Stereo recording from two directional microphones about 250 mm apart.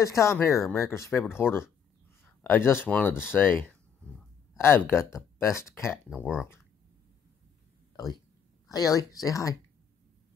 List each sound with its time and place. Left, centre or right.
0.0 s speech: centre
6.0 s speech: centre
7.9 s a sound: centre
8.6 s speech: centre